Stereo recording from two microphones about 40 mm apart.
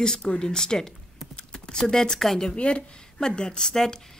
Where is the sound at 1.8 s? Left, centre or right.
Centre.